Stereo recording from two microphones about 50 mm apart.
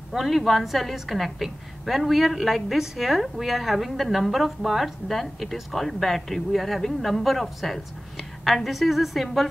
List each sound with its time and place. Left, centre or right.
0.1 s a woman's voice: centre